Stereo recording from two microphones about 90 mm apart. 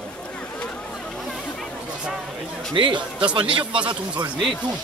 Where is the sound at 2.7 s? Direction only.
70° right (ahead or behind).